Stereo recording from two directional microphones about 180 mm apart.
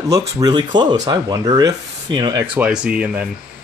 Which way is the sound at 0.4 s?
25° right (ahead or behind).